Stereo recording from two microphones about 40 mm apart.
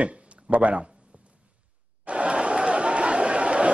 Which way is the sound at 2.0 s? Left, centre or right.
Right.